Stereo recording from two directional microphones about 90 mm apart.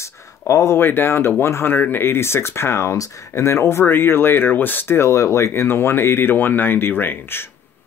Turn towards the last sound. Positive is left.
turn(degrees=25)  # may be behind; listen again after turning